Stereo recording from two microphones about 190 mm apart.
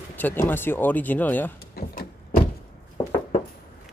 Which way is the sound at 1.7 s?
55° left (ahead or behind).